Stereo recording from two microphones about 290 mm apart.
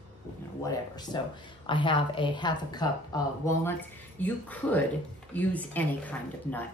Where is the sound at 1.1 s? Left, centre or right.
Centre.